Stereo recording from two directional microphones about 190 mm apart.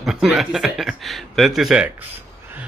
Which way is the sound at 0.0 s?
Centre (ahead or behind).